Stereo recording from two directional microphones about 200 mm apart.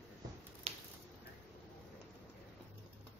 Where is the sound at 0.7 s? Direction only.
30° right (ahead or behind).